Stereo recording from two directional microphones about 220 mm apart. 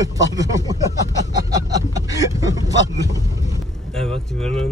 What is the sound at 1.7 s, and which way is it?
Speech, 15° right (ahead or behind).